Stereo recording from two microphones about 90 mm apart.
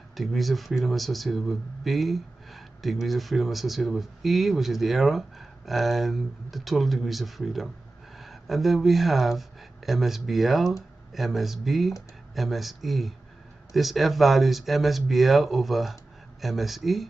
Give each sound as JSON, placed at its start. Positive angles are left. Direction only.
{"t": 0.1, "sound": "speech", "side_deg": 0}